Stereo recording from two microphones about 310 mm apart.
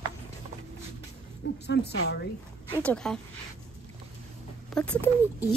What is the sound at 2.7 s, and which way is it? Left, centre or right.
Speech, centre.